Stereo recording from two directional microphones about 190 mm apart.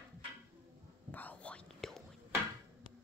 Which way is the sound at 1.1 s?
10° left (ahead or behind).